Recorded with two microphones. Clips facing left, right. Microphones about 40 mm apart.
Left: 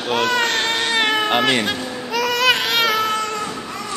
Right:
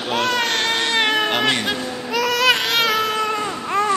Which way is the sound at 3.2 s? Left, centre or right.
Centre.